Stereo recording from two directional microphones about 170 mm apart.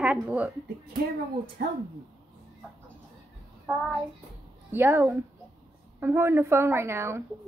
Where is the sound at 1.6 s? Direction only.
65° right (ahead or behind).